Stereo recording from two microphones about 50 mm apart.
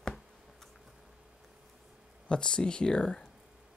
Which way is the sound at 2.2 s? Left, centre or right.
Centre.